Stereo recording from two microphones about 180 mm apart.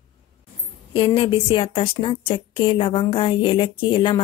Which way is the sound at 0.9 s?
30° left (ahead or behind).